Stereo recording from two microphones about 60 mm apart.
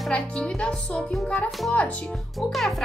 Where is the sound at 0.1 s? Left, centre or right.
Centre.